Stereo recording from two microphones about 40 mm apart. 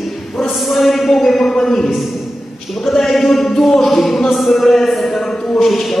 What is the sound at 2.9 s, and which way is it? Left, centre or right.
Speech, centre.